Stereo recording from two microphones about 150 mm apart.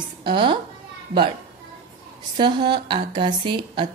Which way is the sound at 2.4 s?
30° right (ahead or behind).